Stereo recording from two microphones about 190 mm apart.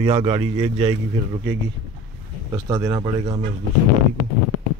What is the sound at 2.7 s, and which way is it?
Speech, 15° right (ahead or behind).